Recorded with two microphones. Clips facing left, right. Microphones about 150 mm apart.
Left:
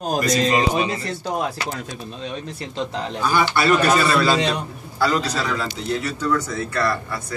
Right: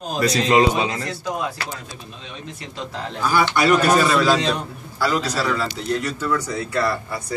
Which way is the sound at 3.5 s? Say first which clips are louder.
Right 2 dB; 10° right (ahead or behind).